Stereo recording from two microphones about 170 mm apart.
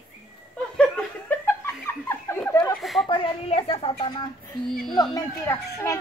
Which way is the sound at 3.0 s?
30° left (ahead or behind).